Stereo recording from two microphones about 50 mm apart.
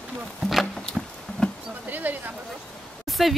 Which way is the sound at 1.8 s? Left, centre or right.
Right.